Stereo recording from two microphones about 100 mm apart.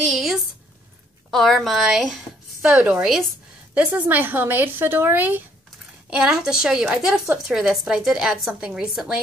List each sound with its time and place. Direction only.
0.0 s a sound: centre (ahead or behind)
1.3 s a woman's voice: centre (ahead or behind)
2.6 s a woman's voice: 15° right (ahead or behind)
6.0 s a woman's voice: 5° right (ahead or behind)